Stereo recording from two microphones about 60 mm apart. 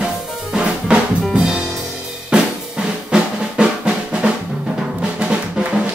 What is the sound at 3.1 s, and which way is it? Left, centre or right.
Drum, centre.